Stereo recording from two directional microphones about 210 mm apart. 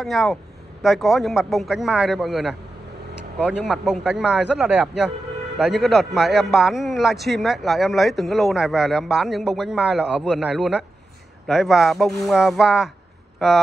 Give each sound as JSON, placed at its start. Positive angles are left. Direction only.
{"t": 0.0, "sound": "a man's voice", "side_deg": 0}